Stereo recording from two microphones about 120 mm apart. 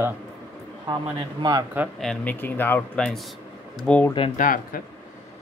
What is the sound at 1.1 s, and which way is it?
Speech, 35° right (ahead or behind).